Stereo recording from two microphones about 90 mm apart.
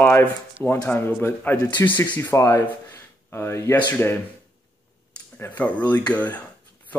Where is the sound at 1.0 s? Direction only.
25° left (ahead or behind).